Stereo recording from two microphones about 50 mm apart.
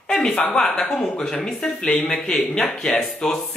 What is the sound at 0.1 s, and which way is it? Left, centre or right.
Speech, centre.